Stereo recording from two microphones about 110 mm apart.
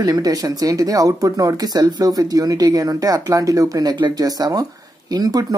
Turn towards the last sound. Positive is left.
turn(degrees=-35)  # may be behind; listen again after turning